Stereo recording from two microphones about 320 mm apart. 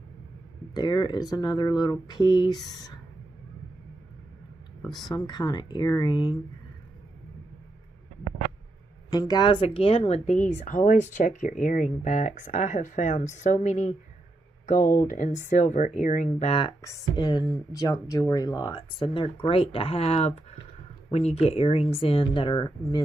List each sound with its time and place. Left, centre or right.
0.7 s speech: centre
5.1 s speech: centre
9.1 s speech: centre
14.8 s speech: centre
15.0 s speech: left